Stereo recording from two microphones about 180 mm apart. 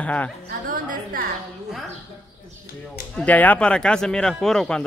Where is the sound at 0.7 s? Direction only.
50° right (ahead or behind).